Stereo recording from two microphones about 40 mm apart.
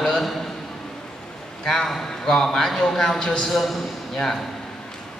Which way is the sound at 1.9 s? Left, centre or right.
Centre.